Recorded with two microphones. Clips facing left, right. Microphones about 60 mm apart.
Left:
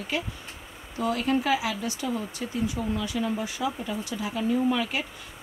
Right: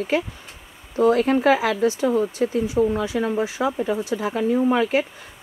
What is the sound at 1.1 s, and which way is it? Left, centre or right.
Speech, right.